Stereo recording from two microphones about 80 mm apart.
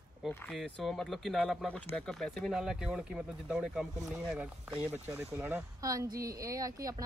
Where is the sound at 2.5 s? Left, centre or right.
Centre.